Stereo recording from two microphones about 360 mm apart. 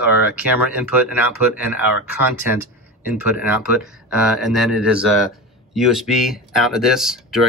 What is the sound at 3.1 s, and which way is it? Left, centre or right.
Speech, centre.